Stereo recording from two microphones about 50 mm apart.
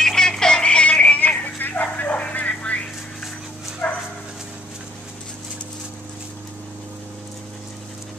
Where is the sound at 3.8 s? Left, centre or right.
Left.